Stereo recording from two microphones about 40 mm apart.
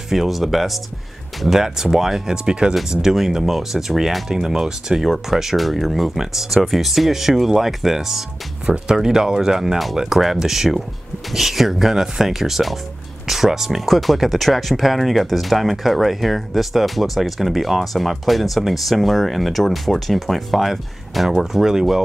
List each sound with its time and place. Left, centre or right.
0.1 s speech: centre
8.6 s speech: right